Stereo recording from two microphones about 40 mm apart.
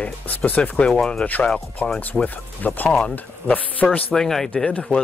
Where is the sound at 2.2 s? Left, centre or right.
Left.